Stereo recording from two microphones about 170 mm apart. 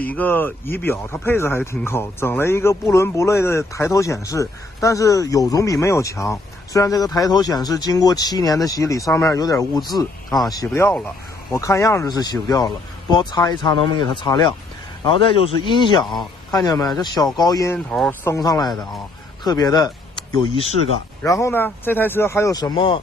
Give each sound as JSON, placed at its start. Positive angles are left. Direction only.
{"t": 0.0, "sound": "speech", "side_deg": 10}
{"t": 21.2, "sound": "speech", "side_deg": 15}